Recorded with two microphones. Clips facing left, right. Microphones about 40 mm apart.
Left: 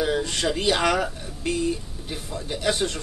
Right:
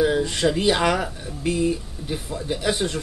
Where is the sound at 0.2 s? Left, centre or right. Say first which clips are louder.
Right 4 dB; centre.